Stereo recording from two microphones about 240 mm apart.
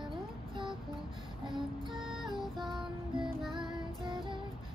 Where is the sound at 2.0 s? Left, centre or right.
Centre.